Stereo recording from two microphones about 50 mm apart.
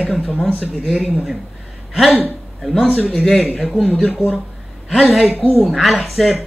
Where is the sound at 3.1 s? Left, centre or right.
Centre.